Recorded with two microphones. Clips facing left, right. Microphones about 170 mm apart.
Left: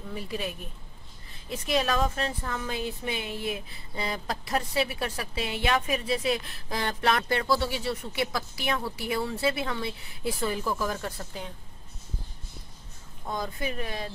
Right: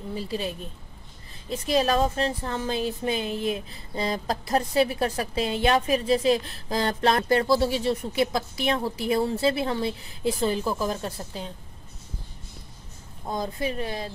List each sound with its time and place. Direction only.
0.1 s a woman's voice: 30° right (ahead or behind)
8.2 s a woman's voice: 25° right (ahead or behind)
9.1 s a woman's voice: 35° right (ahead or behind)
13.3 s a woman's voice: 30° right (ahead or behind)